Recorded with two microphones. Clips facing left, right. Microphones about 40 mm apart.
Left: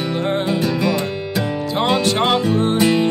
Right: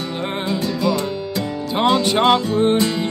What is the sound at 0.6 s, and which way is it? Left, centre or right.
Music, left.